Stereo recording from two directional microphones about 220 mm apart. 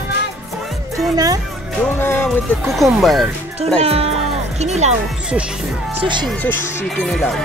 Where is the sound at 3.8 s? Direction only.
25° right (ahead or behind).